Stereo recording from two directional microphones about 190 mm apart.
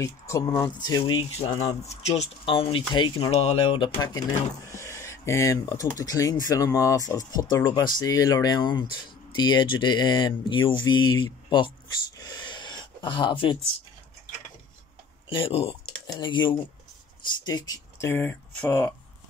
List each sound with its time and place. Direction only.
0.0 s speech: 15° left (ahead or behind)
12.2 s a sound: 20° left (ahead or behind)
15.2 s speech: 30° left (ahead or behind); by 18.9 s 10° left (ahead or behind)